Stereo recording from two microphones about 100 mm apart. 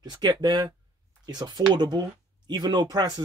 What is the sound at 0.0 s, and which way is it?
Speech, 45° right (ahead or behind).